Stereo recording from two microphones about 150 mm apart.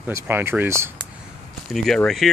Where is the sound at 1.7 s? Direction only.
5° left (ahead or behind).